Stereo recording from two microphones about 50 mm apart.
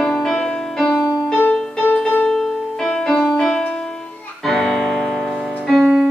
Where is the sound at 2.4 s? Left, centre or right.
Centre.